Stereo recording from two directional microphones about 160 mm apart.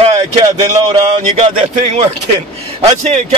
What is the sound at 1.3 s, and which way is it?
Speech, 45° right (ahead or behind).